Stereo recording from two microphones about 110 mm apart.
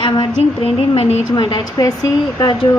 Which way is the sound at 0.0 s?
50° left (ahead or behind).